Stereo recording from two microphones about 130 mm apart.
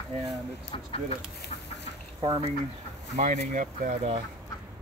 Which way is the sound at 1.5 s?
55° left (ahead or behind).